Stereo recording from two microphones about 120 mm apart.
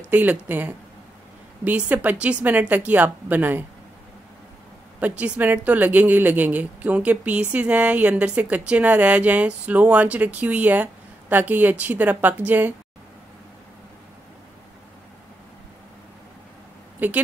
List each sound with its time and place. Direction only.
0.1 s speech: 15° right (ahead or behind)
5.0 s speech: 10° right (ahead or behind)
17.0 s speech: 10° right (ahead or behind)